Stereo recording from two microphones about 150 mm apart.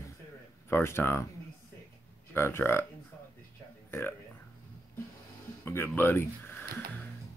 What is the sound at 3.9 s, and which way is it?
Speech, 15° left (ahead or behind).